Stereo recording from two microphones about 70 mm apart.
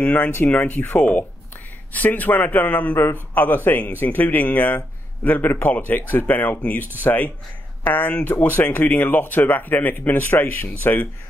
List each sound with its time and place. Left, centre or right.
0.0 s speech: left